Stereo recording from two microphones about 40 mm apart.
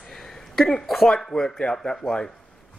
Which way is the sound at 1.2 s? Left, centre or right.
Centre.